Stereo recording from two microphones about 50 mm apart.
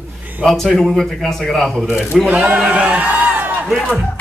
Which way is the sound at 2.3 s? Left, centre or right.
Right.